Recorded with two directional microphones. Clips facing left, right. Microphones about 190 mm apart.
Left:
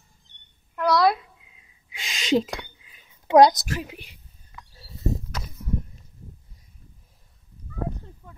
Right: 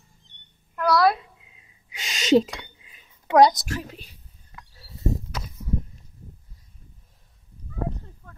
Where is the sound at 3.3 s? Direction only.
15° left (ahead or behind).